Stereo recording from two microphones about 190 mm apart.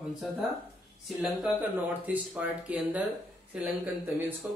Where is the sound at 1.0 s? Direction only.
Centre (ahead or behind).